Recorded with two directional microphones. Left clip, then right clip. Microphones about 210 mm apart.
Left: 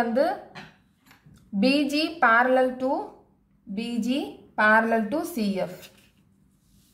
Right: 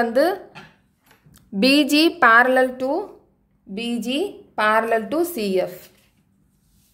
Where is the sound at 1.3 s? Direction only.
50° right (ahead or behind).